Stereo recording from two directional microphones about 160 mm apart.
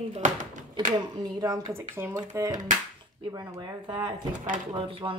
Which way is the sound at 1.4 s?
20° right (ahead or behind).